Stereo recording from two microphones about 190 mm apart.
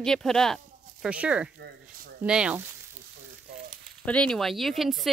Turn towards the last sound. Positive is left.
turn(degrees=0)  # may be behind; listen again after turning